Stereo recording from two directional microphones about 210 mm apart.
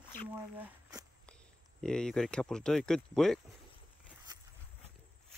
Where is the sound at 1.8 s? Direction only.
5° left (ahead or behind).